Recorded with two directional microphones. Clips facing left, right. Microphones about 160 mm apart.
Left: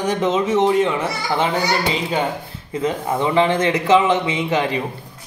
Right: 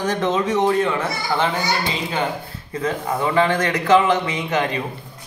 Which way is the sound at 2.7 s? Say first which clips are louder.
Left 2 dB; 20° left (ahead or behind).